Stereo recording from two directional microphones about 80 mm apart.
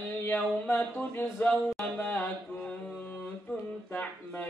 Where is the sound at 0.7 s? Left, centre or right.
Left.